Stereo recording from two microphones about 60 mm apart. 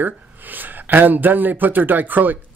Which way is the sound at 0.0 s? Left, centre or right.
Right.